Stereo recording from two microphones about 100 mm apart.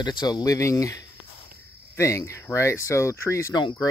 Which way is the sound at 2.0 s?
30° left (ahead or behind).